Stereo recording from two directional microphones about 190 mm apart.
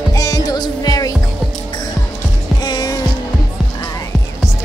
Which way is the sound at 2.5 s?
20° left (ahead or behind).